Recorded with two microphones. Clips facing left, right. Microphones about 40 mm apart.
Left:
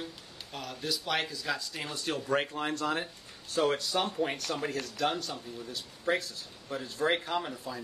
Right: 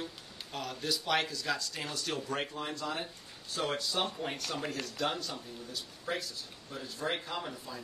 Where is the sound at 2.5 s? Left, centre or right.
Left.